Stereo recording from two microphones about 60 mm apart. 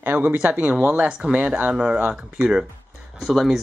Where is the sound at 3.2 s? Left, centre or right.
Centre.